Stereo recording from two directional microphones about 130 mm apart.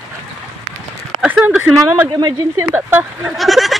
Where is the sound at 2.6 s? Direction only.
15° right (ahead or behind).